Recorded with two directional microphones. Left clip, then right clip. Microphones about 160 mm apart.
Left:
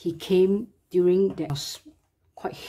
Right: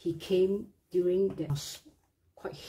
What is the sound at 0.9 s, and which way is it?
Speech, 30° left (ahead or behind).